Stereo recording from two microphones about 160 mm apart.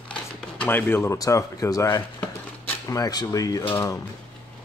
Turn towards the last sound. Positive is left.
turn(degrees=20)  # may be behind; listen again after turning